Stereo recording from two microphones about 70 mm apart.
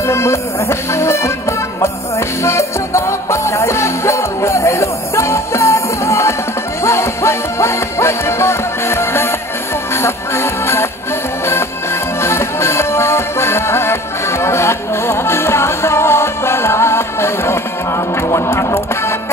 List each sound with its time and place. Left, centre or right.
0.1 s music: left
2.4 s music: left
12.2 s music: left